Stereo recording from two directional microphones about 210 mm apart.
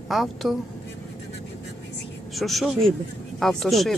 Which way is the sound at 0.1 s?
Centre (ahead or behind).